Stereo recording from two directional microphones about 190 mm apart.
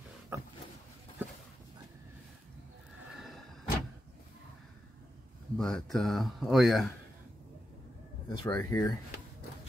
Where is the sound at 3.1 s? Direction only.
Centre (ahead or behind).